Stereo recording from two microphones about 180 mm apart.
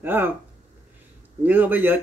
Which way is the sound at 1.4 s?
10° right (ahead or behind).